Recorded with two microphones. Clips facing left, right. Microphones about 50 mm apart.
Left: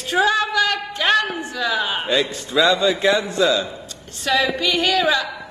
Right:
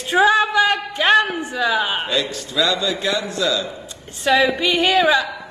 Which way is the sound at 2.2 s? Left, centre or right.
Left.